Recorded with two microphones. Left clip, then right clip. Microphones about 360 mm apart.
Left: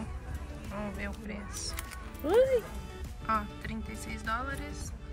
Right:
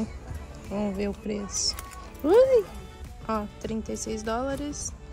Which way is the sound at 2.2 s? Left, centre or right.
Left.